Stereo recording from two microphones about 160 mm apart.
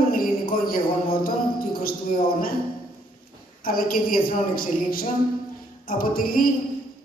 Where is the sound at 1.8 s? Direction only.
65° left (ahead or behind).